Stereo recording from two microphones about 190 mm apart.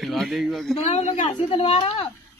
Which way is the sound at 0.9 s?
35° left (ahead or behind).